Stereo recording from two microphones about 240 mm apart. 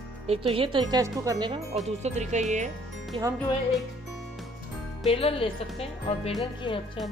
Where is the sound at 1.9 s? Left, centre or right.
Right.